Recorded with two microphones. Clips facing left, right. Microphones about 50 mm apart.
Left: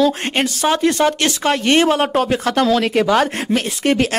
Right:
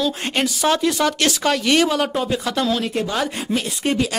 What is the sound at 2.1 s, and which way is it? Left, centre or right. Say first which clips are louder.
Speech: left 5 dB; left.